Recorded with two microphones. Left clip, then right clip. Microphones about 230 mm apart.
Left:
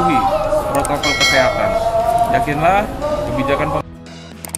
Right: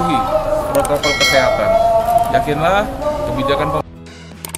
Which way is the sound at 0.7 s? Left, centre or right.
Centre.